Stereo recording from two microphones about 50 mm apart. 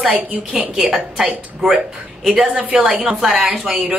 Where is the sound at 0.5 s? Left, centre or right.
Centre.